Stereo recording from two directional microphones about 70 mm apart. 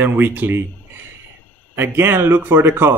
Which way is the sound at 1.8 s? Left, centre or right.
Right.